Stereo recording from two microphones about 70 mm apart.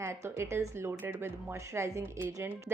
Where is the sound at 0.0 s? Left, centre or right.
Right.